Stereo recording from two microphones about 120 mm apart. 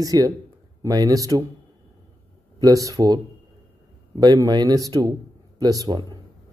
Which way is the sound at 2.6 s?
30° right (ahead or behind).